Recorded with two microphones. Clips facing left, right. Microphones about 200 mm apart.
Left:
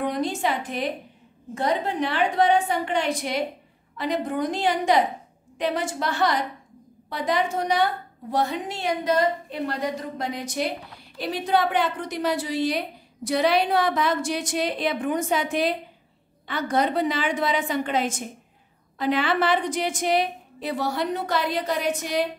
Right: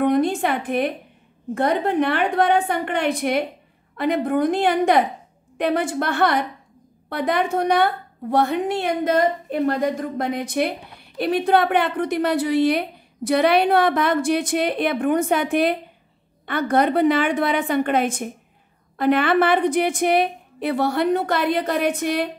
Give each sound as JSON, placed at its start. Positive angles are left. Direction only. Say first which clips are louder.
{"t": 0.0, "sound": "a woman's voice", "louder": "right 7 dB", "side_deg": -55}